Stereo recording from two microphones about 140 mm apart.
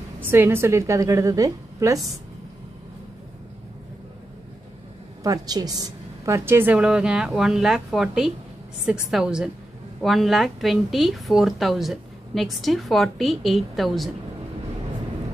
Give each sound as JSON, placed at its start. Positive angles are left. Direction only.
{"t": 0.2, "sound": "a woman's voice", "side_deg": -15}
{"t": 5.2, "sound": "a woman's voice", "side_deg": -25}